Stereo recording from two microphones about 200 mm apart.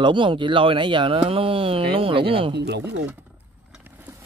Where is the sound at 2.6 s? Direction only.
60° right (ahead or behind).